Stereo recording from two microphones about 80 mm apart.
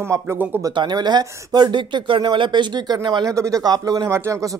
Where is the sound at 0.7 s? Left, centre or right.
Right.